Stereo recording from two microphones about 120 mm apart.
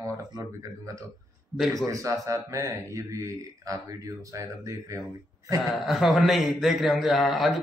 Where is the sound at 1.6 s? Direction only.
Centre (ahead or behind).